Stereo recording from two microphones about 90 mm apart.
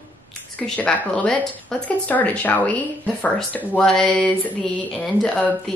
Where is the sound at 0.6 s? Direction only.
10° left (ahead or behind).